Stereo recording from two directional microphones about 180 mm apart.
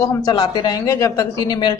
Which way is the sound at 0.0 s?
20° left (ahead or behind).